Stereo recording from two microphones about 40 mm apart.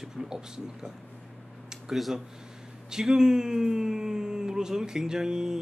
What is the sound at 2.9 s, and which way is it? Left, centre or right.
A man's voice, centre.